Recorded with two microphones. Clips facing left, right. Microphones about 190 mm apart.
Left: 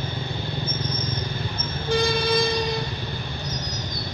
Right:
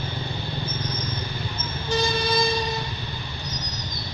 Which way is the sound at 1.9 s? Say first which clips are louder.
Left 2 dB; 55° left (ahead or behind).